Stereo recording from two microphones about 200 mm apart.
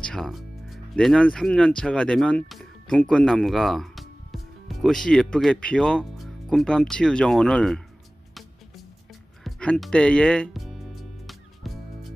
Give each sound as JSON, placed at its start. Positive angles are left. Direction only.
{"t": 0.0, "sound": "speech", "side_deg": 0}
{"t": 9.4, "sound": "music", "side_deg": 5}